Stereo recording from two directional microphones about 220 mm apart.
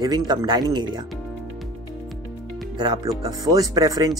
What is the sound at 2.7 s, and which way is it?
Speech, 20° right (ahead or behind).